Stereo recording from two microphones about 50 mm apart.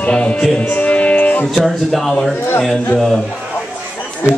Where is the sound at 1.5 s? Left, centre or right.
Centre.